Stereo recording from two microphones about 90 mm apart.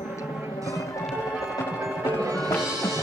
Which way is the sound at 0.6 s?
35° left (ahead or behind).